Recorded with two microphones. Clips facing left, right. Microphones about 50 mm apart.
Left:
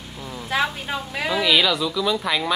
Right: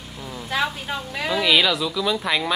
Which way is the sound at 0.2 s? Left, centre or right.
Centre.